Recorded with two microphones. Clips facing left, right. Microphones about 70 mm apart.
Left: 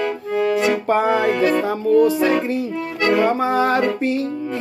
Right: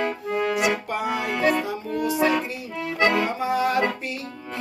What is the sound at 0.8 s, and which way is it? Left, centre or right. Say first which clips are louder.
Music: left 9 dB; left.